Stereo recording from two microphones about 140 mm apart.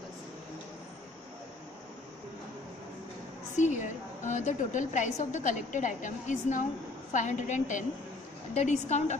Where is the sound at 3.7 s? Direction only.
60° left (ahead or behind).